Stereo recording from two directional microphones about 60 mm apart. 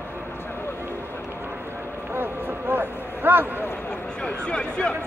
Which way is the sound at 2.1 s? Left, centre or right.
Right.